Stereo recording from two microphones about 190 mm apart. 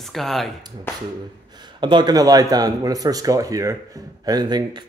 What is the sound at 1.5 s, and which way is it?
A man's voice, 25° right (ahead or behind).